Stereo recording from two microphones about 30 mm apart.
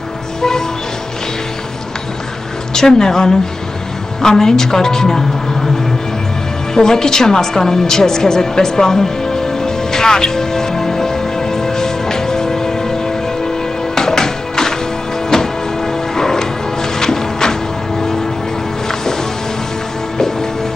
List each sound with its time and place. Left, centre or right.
0.4 s music: centre
2.7 s a woman's voice: centre
6.7 s music: centre
13.9 s music: centre
20.2 s music: centre